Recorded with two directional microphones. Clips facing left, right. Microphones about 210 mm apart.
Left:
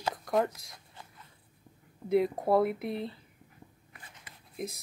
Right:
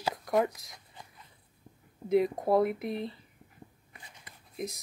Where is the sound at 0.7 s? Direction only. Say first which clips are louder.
Even; 15° right (ahead or behind).